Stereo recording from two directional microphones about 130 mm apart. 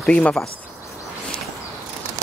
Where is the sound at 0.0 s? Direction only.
5° left (ahead or behind).